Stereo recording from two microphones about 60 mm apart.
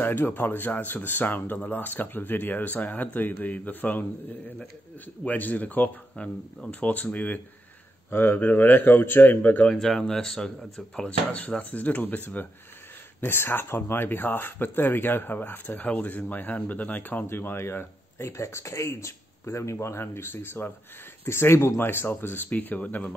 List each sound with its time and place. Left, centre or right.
0.0 s speech: left
8.1 s speech: left
9.7 s speech: centre; by 12.4 s left
13.2 s speech: left